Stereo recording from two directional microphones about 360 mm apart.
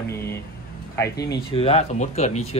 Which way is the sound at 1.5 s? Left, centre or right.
Centre.